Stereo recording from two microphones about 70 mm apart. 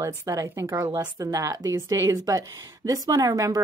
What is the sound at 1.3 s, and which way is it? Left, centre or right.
Speech, right.